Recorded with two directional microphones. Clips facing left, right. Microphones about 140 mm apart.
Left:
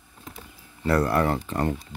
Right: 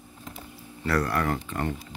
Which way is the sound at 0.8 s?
25° left (ahead or behind).